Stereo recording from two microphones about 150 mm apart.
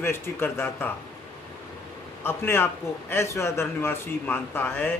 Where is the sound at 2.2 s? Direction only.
15° left (ahead or behind).